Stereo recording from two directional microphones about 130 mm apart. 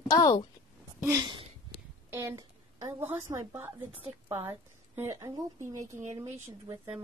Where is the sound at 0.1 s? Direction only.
30° left (ahead or behind).